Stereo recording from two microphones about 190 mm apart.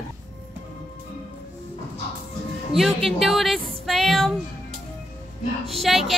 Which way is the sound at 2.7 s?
Centre (ahead or behind).